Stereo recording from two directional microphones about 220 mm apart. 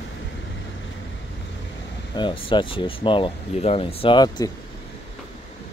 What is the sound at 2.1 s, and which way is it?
Speech, 20° left (ahead or behind).